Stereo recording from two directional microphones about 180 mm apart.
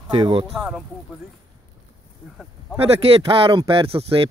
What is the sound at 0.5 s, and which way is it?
Speech, centre (ahead or behind).